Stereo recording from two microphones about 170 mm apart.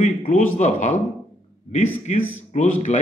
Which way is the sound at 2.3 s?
45° left (ahead or behind).